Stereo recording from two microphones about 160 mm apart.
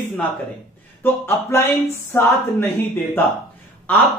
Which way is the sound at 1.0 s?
15° left (ahead or behind).